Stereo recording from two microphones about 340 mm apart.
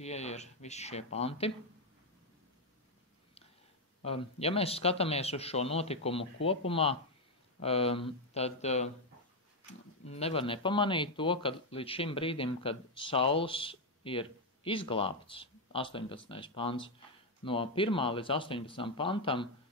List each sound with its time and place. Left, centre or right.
0.0 s speech: centre
4.0 s speech: centre